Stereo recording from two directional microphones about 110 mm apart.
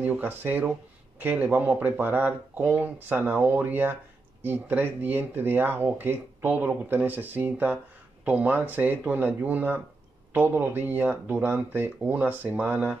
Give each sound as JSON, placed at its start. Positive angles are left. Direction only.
{"t": 0.0, "sound": "speech", "side_deg": -15}